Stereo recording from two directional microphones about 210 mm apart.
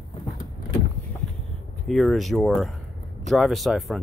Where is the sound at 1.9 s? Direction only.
Centre (ahead or behind).